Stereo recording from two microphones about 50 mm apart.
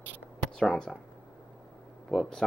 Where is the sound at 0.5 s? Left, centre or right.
Centre.